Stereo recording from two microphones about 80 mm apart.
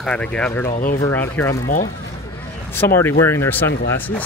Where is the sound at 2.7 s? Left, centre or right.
Left.